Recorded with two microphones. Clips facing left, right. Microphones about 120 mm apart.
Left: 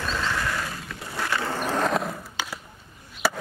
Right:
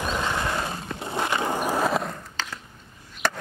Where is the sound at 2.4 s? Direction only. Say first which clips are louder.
Left 1 dB; 10° left (ahead or behind).